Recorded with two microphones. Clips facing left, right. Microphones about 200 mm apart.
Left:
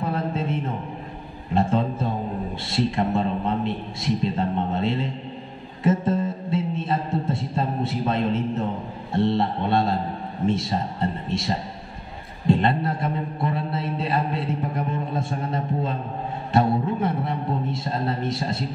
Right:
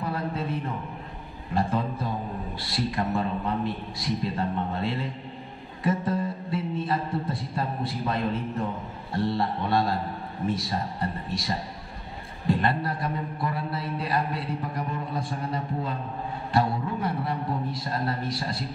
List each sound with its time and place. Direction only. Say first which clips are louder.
0.0 s a sound: left 4 dB; 25° left (ahead or behind)
2.6 s a man's voice: left 5 dB; 25° left (ahead or behind)
5.9 s music: left 4 dB; 25° left (ahead or behind)
9.1 s a man's voice: left 5 dB; 25° left (ahead or behind)